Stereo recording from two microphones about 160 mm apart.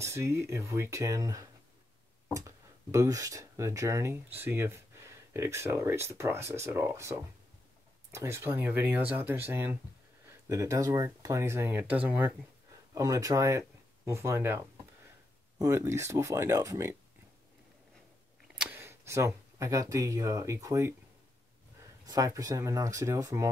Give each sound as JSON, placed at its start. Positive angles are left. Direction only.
{"t": 0.0, "sound": "speech", "side_deg": -15}
{"t": 12.9, "sound": "speech", "side_deg": -20}
{"t": 18.5, "sound": "camera", "side_deg": -5}
{"t": 18.8, "sound": "speech", "side_deg": -15}
{"t": 22.0, "sound": "speech", "side_deg": -25}